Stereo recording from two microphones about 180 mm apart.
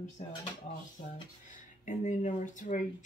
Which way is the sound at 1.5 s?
45° left (ahead or behind).